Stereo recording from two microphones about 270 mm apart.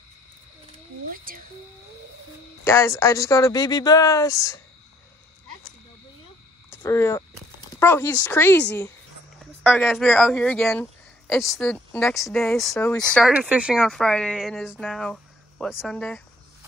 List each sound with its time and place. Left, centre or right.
1.1 s a sound: right
2.6 s speech: centre
6.7 s speech: centre